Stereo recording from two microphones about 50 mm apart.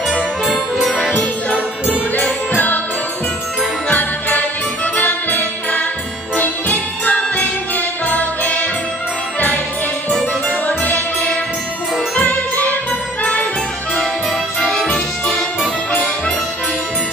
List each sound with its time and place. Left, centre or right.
2.1 s music: left
3.9 s jingle bell: left
4.9 s music: left
6.3 s jingle bell: left
10.7 s music: left
15.9 s music: left